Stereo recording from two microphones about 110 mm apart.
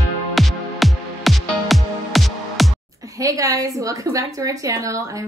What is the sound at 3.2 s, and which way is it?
A woman's voice, 30° right (ahead or behind).